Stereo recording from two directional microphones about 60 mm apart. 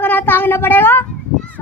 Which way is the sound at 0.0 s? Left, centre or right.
Left.